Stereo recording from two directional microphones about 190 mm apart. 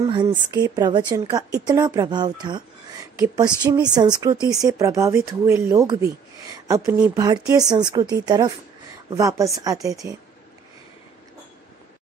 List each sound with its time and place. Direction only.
0.0 s a woman's voice: 25° right (ahead or behind)